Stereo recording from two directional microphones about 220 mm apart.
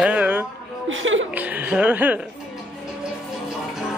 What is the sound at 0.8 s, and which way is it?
Chuckle, 60° right (ahead or behind).